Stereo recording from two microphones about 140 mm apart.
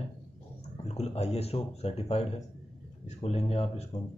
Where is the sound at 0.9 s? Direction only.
50° left (ahead or behind).